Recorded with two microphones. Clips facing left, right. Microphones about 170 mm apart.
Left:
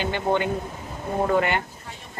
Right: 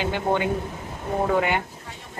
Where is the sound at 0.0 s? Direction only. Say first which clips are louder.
Even; 10° right (ahead or behind).